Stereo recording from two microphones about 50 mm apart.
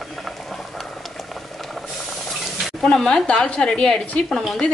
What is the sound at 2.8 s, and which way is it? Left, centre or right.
A woman's voice, centre.